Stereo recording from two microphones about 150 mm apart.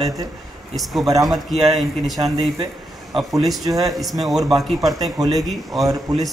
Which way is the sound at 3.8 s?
Centre (ahead or behind).